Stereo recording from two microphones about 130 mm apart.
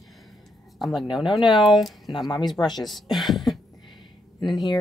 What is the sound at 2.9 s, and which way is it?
Speech, centre (ahead or behind).